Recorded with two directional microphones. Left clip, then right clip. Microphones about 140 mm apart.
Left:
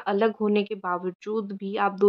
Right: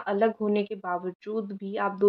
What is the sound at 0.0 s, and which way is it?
Speech, 40° left (ahead or behind).